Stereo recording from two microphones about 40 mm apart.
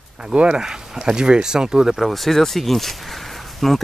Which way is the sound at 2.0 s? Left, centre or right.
Centre.